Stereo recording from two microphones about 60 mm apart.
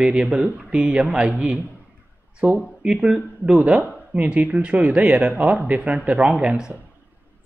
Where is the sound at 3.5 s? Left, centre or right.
Right.